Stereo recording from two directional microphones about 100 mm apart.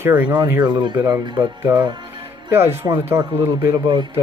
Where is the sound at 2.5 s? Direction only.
20° right (ahead or behind).